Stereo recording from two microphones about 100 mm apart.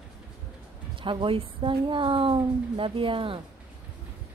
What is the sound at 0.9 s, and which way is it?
A woman's voice, 55° right (ahead or behind).